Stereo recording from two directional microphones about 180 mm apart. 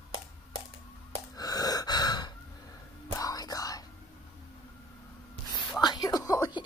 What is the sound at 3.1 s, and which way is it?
Whispering, 20° left (ahead or behind).